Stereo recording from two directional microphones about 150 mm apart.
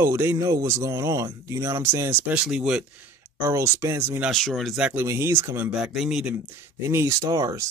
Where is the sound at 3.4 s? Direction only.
15° right (ahead or behind).